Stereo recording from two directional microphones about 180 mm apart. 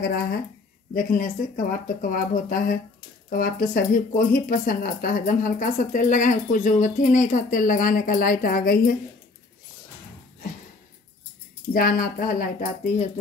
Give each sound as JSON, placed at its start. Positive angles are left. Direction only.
{"t": 0.0, "sound": "speech", "side_deg": 60}
{"t": 11.7, "sound": "speech", "side_deg": 55}